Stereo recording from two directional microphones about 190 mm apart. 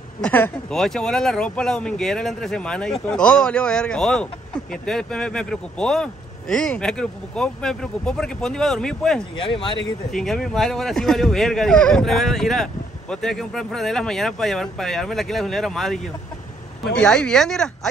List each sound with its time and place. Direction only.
0.2 s speech: 5° left (ahead or behind)
9.4 s speech: 25° left (ahead or behind)
10.1 s speech: centre (ahead or behind)